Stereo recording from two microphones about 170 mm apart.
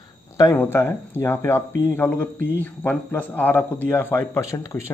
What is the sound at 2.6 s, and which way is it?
A man's voice, 10° left (ahead or behind).